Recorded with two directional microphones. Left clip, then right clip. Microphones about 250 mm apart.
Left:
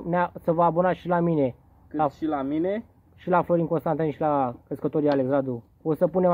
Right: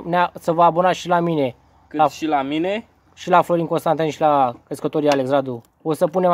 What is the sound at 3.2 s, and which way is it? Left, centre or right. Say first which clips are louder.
Speech: right 6 dB; centre.